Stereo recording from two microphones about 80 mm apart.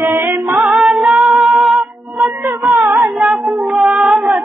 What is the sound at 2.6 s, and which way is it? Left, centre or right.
Child singing, centre.